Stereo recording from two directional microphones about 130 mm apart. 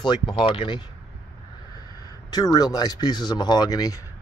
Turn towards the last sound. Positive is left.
turn(degrees=30)  # may be behind; listen again after turning